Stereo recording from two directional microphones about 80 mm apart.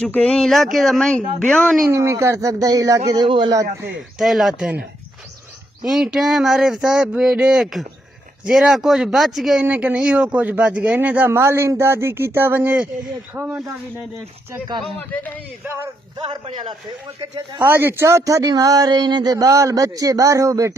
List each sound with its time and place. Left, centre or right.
0.0 s speech: centre
1.9 s speech: right
3.3 s a man's voice: right
4.2 s speech: centre
5.9 s speech: centre
9.6 s speech: centre
11.3 s speech: right
16.3 s a man's voice: right
17.6 s speech: right